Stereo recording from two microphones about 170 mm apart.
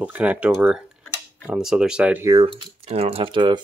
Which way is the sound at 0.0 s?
10° right (ahead or behind).